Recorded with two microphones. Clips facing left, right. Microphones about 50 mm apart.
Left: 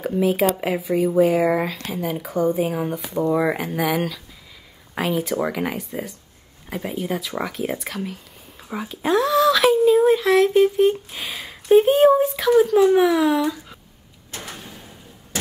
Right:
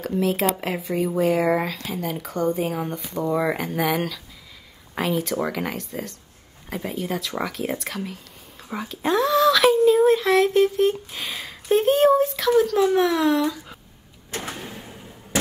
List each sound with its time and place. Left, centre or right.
0.0 s speech: centre
14.3 s door: right